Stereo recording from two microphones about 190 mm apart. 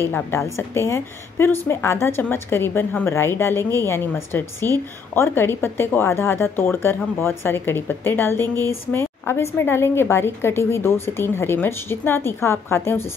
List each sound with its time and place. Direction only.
0.0 s a woman's voice: 15° left (ahead or behind)